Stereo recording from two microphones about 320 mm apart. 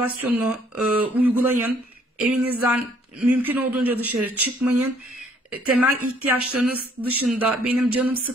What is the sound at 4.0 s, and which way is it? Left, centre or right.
Speech, right.